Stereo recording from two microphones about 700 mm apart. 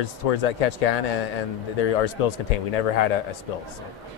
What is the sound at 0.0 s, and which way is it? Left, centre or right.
A man's voice, left.